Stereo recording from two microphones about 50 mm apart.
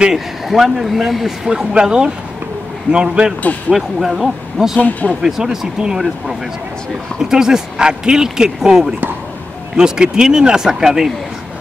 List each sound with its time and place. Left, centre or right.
0.5 s speech: centre
1.5 s speech: centre
3.7 s speech: centre
4.7 s speech: left
5.2 s speech: centre